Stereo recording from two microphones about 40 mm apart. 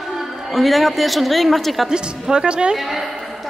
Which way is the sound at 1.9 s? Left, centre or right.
Centre.